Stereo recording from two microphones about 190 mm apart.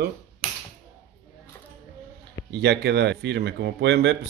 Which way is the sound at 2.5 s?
65° right (ahead or behind).